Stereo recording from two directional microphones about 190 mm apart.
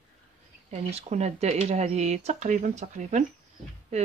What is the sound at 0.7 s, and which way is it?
Speech, 35° right (ahead or behind).